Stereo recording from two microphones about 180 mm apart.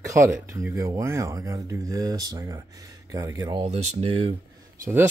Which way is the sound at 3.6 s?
35° right (ahead or behind).